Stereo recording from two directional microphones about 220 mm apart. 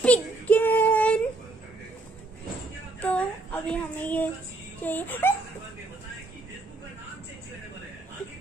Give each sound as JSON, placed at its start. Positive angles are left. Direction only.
{"t": 0.0, "sound": "child singing", "side_deg": 5}
{"t": 3.0, "sound": "female singing", "side_deg": 5}
{"t": 4.8, "sound": "a sound", "side_deg": 10}